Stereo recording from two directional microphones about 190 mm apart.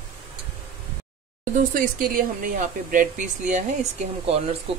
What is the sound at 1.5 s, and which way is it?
Speech, 45° right (ahead or behind).